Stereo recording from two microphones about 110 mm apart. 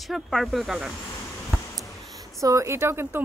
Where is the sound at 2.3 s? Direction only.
30° right (ahead or behind).